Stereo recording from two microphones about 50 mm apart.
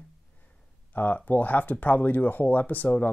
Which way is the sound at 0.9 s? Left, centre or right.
Left.